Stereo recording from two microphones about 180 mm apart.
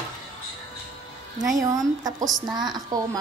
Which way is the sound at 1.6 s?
20° right (ahead or behind).